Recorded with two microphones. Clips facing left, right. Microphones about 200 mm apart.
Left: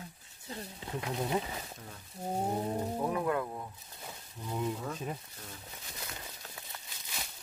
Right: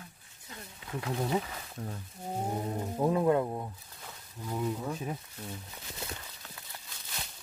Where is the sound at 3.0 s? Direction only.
25° right (ahead or behind).